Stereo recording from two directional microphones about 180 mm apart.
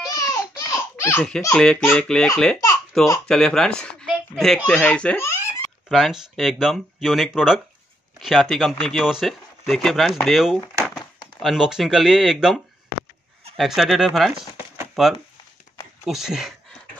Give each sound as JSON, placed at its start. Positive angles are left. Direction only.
{"t": 0.2, "sound": "baby laughter", "side_deg": 20}
{"t": 1.5, "sound": "a child's voice", "side_deg": 5}
{"t": 5.9, "sound": "speech", "side_deg": 0}